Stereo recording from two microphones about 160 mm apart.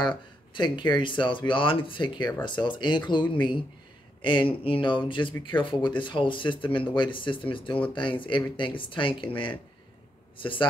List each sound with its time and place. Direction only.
0.0 s speech: 30° left (ahead or behind)